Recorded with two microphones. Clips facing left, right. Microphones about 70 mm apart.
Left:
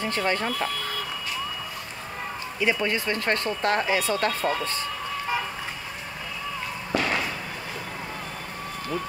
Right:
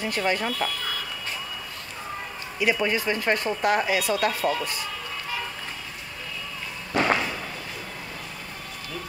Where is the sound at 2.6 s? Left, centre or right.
Centre.